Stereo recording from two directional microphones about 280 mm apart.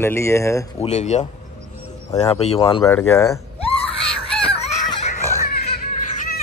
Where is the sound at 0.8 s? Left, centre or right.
Left.